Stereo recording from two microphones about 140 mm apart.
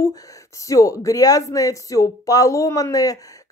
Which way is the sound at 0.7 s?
25° left (ahead or behind).